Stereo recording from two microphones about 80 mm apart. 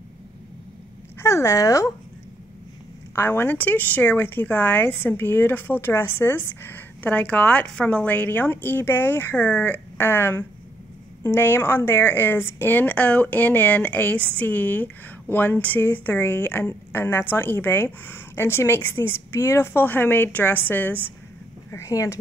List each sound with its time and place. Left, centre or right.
1.2 s speech: left
3.2 s speech: left
21.6 s speech: left